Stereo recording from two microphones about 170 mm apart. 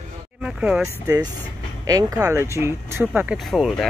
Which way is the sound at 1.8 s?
20° right (ahead or behind).